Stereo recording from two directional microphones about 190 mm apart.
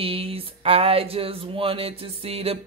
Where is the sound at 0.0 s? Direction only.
30° right (ahead or behind).